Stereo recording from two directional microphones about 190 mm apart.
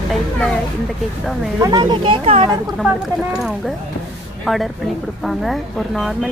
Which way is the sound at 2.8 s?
Centre (ahead or behind).